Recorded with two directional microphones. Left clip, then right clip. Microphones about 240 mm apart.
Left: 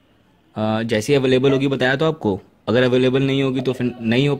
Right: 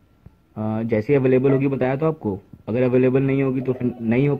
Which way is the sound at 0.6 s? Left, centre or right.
Left.